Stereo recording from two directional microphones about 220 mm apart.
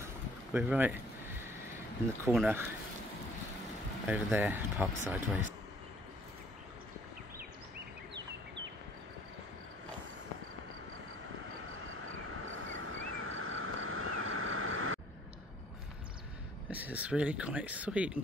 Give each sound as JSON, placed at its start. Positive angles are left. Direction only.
{"t": 0.5, "sound": "speech", "side_deg": -5}
{"t": 2.3, "sound": "speech", "side_deg": -5}
{"t": 4.1, "sound": "speech", "side_deg": -10}
{"t": 12.1, "sound": "vehicle", "side_deg": -65}
{"t": 16.7, "sound": "speech", "side_deg": -5}